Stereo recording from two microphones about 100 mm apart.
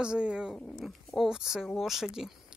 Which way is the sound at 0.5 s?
10° left (ahead or behind).